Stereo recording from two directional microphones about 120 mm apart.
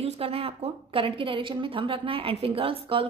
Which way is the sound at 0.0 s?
55° right (ahead or behind).